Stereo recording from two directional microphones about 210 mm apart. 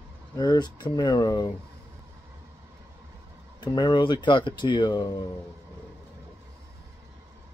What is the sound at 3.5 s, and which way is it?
Speech, 20° left (ahead or behind).